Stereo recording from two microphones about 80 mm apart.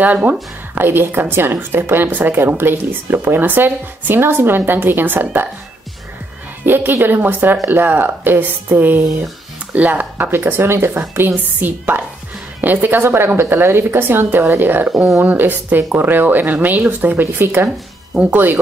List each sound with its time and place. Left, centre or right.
0.0 s a woman's voice: centre
6.6 s a woman's voice: right